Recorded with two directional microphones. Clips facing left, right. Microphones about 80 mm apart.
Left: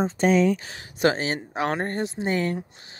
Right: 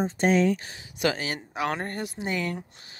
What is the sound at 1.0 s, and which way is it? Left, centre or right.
Speech, left.